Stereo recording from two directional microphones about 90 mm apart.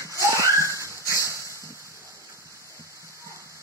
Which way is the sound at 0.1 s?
35° right (ahead or behind).